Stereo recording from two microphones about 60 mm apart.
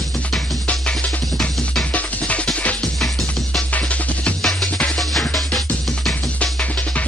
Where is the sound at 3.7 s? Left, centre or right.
Left.